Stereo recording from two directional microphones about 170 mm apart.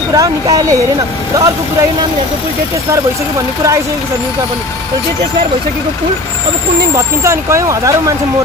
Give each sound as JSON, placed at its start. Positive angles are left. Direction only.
{"t": 0.1, "sound": "speech", "side_deg": -20}
{"t": 7.2, "sound": "speech", "side_deg": -15}